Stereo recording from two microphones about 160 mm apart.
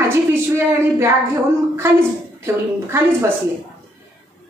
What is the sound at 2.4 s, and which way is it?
Speech, 15° right (ahead or behind).